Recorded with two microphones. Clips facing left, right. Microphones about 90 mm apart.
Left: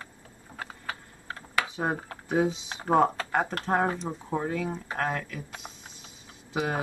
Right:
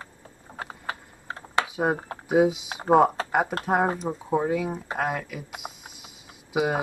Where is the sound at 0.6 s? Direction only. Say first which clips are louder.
Right 3 dB; 25° right (ahead or behind).